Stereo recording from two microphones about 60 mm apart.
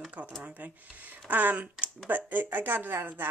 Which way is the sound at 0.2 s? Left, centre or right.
Right.